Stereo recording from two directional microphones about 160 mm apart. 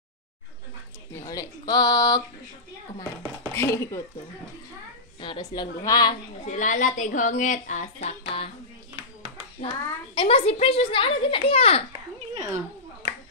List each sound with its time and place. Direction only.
1.2 s speech: 20° left (ahead or behind)
3.5 s speech: 15° left (ahead or behind)
5.5 s a woman's voice: 25° left (ahead or behind)
6.4 s speech: 55° left (ahead or behind)
9.6 s a woman's voice: 35° left (ahead or behind)